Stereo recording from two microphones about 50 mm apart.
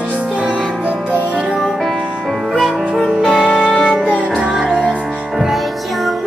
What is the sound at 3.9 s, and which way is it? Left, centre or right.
Music, right.